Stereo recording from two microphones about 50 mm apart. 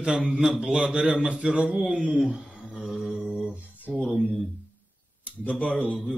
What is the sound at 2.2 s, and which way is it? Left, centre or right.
Mantra, centre.